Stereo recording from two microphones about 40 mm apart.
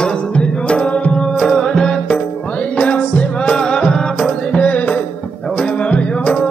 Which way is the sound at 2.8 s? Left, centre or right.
Left.